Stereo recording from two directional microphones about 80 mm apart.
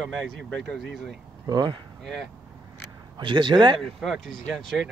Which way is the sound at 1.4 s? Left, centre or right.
Right.